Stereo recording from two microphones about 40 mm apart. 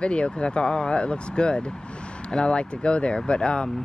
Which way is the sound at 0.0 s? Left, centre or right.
Left.